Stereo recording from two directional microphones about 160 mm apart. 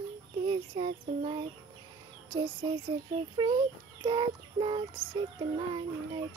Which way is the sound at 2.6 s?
25° right (ahead or behind).